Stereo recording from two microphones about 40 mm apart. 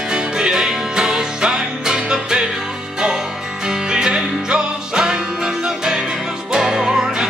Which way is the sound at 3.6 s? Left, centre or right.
Centre.